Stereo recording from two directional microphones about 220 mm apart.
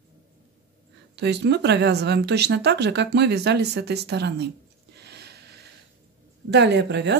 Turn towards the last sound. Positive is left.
turn(degrees=-50)  # may be behind; listen again after turning